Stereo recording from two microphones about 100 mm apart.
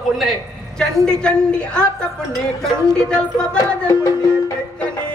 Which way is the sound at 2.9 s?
10° left (ahead or behind).